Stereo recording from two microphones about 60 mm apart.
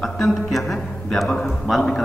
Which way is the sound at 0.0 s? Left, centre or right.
Centre.